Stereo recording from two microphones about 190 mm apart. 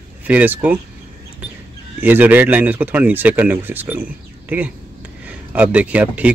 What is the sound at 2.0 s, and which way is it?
Speech, 10° right (ahead or behind).